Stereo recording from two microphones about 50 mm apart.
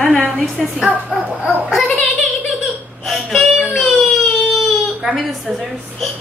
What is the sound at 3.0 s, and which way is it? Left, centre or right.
Baby cry, centre.